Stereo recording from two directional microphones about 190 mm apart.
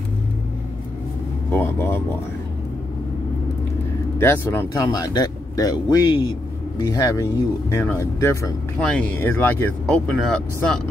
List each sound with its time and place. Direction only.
1.5 s speech: 10° left (ahead or behind)
4.2 s speech: 15° left (ahead or behind)